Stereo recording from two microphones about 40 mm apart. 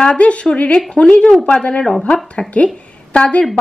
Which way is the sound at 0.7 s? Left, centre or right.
Centre.